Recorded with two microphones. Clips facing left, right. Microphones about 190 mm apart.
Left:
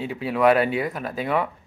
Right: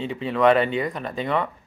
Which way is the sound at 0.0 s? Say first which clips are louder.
Even; 5° left (ahead or behind).